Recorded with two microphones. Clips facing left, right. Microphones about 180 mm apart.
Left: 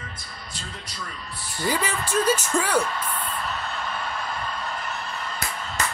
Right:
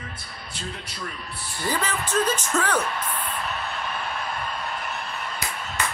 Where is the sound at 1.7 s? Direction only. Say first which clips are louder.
Left 1 dB; 10° left (ahead or behind).